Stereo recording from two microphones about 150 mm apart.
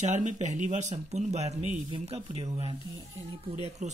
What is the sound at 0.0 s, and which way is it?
Speech, 55° right (ahead or behind).